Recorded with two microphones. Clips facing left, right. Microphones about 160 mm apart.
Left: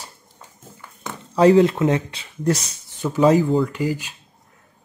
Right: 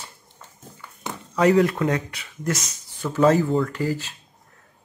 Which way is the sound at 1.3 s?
30° left (ahead or behind).